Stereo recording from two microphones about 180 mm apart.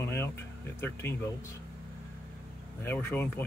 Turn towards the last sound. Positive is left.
turn(degrees=10)  # may be behind; listen again after turning